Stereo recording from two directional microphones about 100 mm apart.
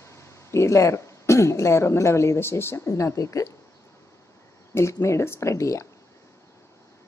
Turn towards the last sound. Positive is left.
turn(degrees=30)  # may be behind; listen again after turning